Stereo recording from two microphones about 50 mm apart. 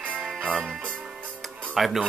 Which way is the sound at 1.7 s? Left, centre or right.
Centre.